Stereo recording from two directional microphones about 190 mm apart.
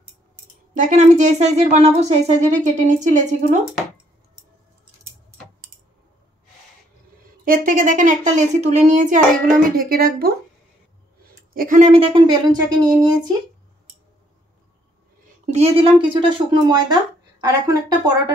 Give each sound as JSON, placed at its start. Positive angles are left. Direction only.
{"t": 0.7, "sound": "speech", "side_deg": -40}
{"t": 7.4, "sound": "a woman's voice", "side_deg": -45}
{"t": 11.5, "sound": "speech", "side_deg": -45}
{"t": 15.5, "sound": "speech", "side_deg": -30}